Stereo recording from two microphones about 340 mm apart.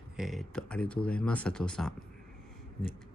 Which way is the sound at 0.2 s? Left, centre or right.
Centre.